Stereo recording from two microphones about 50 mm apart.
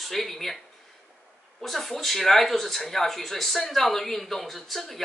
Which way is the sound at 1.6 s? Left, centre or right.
Centre.